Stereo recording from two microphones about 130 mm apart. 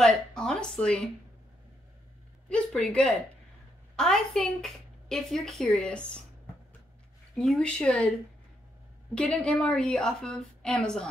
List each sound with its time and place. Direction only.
0.0 s a sound: 5° left (ahead or behind)
2.5 s a woman's voice: 5° left (ahead or behind)
7.3 s a woman's voice: 5° left (ahead or behind)
9.1 s a woman's voice: 10° left (ahead or behind)